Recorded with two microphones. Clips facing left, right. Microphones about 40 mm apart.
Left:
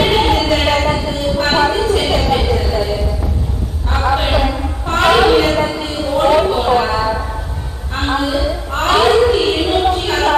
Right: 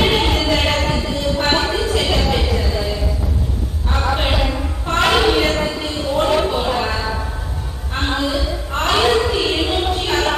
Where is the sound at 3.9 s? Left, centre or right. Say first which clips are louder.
Left 4 dB; centre.